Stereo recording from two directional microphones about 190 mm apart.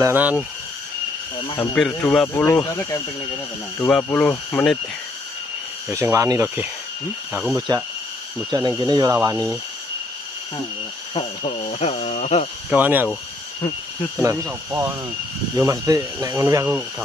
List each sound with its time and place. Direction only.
0.0 s speech: 10° right (ahead or behind)
1.6 s speech: 10° left (ahead or behind)
3.9 s speech: 5° left (ahead or behind)
5.9 s speech: 15° right (ahead or behind)
11.1 s speech: 30° left (ahead or behind)
12.6 s speech: 10° right (ahead or behind)
14.2 s speech: 15° right (ahead or behind)